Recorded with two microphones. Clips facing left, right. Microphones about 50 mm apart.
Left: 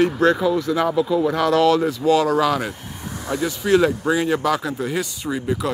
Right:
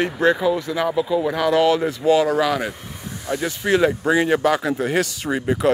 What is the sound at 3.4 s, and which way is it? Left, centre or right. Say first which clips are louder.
Speech: left 1 dB; right.